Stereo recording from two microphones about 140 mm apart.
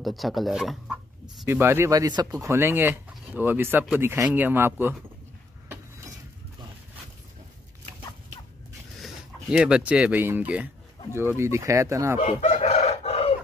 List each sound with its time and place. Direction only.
0.0 s speech: centre (ahead or behind)
1.5 s speech: 15° right (ahead or behind)
9.0 s speech: 5° right (ahead or behind); by 12.2 s 20° right (ahead or behind)
12.2 s chicken: 60° left (ahead or behind)